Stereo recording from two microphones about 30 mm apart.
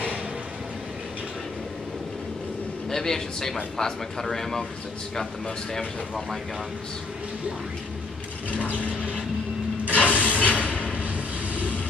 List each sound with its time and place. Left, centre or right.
2.9 s a man's voice: centre
8.6 s vehicle: left
9.9 s train: left
10.5 s a sound: left